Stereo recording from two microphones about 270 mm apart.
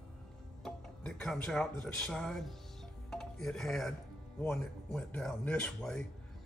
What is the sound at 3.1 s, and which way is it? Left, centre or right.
Music, centre.